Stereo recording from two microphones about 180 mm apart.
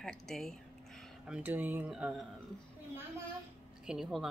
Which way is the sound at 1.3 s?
10° right (ahead or behind).